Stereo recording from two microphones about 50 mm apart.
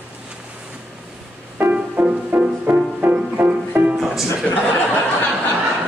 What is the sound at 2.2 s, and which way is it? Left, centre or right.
Music, right.